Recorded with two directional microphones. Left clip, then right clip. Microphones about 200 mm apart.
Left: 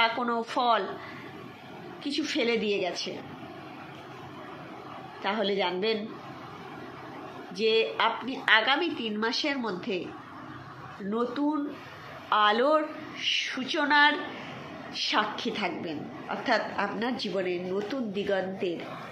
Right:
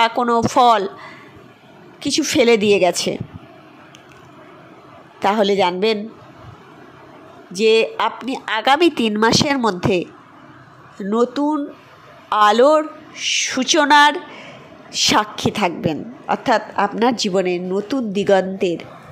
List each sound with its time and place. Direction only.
0.0 s a woman's voice: 55° right (ahead or behind)
2.0 s a woman's voice: 60° right (ahead or behind)
5.2 s a woman's voice: 60° right (ahead or behind)
7.5 s a woman's voice: 60° right (ahead or behind)
11.1 s a woman's voice: 50° right (ahead or behind)